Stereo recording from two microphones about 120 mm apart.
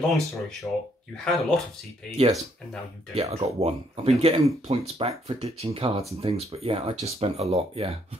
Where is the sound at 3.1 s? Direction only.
60° right (ahead or behind).